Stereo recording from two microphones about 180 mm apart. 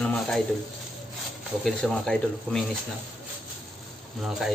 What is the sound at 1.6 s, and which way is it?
Speech, 5° left (ahead or behind).